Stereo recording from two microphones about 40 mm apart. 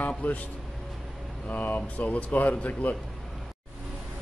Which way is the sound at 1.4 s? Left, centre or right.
Left.